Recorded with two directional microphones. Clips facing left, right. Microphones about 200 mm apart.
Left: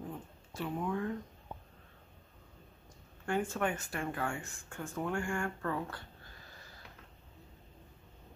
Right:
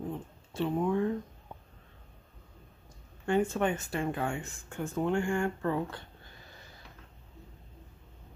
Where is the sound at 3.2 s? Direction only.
20° right (ahead or behind).